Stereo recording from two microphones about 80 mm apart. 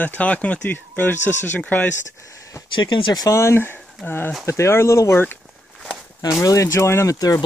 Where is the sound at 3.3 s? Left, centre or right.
Left.